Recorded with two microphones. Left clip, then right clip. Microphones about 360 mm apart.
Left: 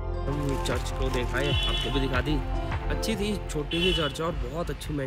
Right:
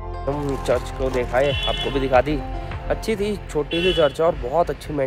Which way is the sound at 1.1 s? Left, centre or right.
Centre.